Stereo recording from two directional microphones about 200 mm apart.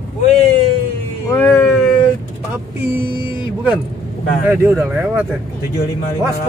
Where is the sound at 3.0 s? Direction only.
25° left (ahead or behind).